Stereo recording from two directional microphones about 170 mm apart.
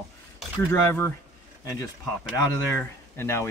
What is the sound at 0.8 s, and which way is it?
Speech, 15° left (ahead or behind).